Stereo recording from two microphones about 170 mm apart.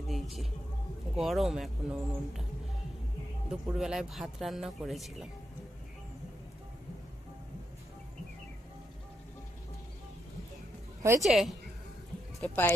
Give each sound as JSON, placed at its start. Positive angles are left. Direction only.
{"t": 0.1, "sound": "a sound", "side_deg": 0}
{"t": 1.1, "sound": "speech", "side_deg": 0}
{"t": 3.4, "sound": "speech", "side_deg": -5}
{"t": 11.0, "sound": "a woman's voice", "side_deg": -20}
{"t": 11.2, "sound": "speech", "side_deg": 0}